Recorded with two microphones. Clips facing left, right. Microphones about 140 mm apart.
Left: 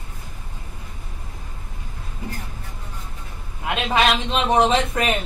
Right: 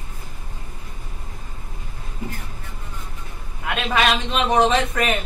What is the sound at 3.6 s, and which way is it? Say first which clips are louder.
A woman's voice: left 1 dB; 25° left (ahead or behind).